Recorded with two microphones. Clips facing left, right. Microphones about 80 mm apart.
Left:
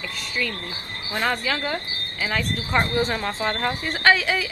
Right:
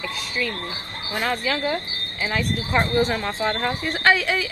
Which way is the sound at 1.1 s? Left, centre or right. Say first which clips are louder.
Even; centre.